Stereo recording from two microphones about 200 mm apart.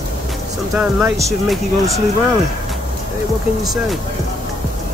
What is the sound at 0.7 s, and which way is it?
Speech, 10° right (ahead or behind).